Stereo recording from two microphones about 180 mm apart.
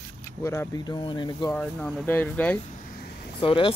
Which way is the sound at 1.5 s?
5° left (ahead or behind).